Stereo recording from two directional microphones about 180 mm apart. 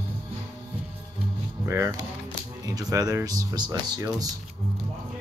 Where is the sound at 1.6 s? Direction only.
15° right (ahead or behind).